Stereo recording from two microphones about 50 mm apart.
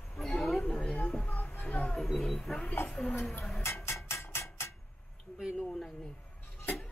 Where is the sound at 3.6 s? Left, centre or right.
Left.